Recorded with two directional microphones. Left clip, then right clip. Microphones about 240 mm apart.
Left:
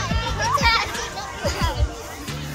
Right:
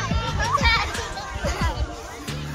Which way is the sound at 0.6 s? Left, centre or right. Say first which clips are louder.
Left 2 dB; centre.